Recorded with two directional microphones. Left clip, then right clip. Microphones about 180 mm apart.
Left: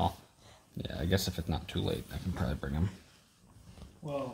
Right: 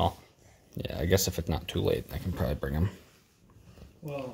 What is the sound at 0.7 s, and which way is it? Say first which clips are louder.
Speech: right 6 dB; 40° right (ahead or behind).